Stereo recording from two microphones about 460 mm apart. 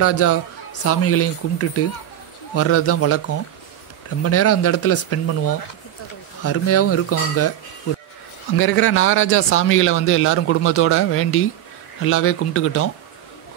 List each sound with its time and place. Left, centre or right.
0.0 s speech: left
8.5 s speech: left